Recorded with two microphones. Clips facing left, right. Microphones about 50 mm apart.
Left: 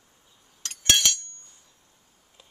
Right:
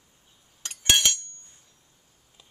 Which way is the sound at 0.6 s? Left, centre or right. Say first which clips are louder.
Right 1 dB; centre.